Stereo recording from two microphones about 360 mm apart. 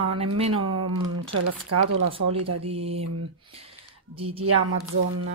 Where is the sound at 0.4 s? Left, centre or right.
Centre.